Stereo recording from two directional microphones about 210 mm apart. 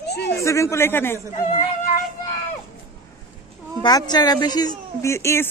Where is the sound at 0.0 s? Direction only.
50° left (ahead or behind).